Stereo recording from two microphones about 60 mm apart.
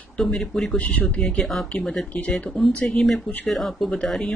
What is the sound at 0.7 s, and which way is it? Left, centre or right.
Speech, left.